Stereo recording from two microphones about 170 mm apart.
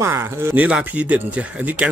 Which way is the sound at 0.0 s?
15° right (ahead or behind).